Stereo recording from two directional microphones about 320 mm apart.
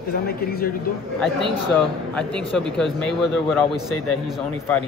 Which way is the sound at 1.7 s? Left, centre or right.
Centre.